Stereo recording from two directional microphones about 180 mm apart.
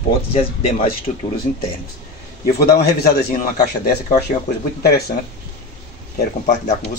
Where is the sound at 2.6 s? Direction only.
60° left (ahead or behind).